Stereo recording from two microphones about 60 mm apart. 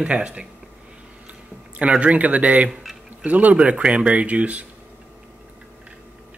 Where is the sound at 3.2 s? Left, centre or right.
Right.